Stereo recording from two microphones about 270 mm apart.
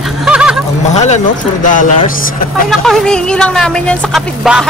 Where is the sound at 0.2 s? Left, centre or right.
Centre.